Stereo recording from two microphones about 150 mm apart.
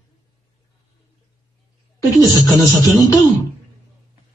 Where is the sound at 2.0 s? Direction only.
25° left (ahead or behind).